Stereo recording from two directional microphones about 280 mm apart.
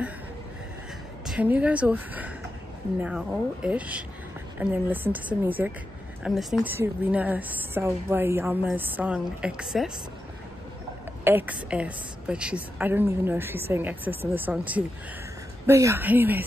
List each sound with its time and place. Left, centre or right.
1.2 s a woman's voice: centre
11.2 s a woman's voice: centre